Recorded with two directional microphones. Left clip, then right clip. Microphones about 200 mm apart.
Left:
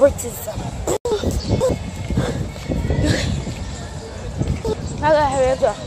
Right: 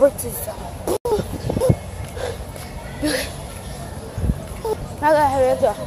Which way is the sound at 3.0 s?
5° right (ahead or behind).